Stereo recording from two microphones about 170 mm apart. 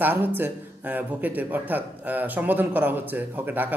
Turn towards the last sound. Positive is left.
turn(degrees=-10)  # may be behind; listen again after turning